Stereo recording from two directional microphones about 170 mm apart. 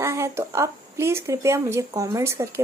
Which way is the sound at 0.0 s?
15° right (ahead or behind).